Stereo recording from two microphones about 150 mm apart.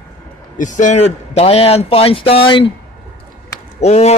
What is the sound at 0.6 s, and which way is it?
A man's voice, 55° left (ahead or behind).